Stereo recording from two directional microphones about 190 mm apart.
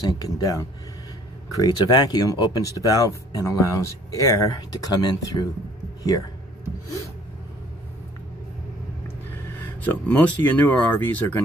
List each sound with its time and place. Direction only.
0.0 s speech: 20° left (ahead or behind)
9.6 s speech: 5° left (ahead or behind)